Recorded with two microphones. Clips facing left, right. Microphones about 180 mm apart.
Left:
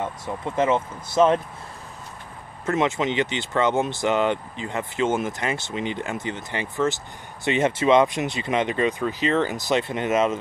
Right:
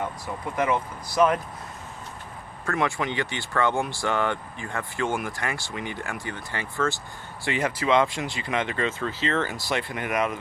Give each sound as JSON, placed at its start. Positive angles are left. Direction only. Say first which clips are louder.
{"t": 0.6, "sound": "speech", "louder": "left 4 dB", "side_deg": 25}
{"t": 2.6, "sound": "speech", "louder": "left 4 dB", "side_deg": 20}